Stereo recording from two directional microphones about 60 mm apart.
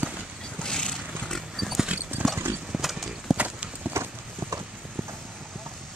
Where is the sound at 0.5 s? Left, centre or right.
Centre.